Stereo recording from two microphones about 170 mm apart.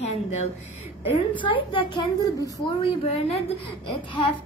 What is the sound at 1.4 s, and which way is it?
A woman's voice, 30° left (ahead or behind).